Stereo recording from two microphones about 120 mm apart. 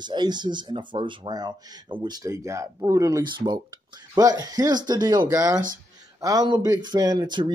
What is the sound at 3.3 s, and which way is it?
Speech, 40° right (ahead or behind).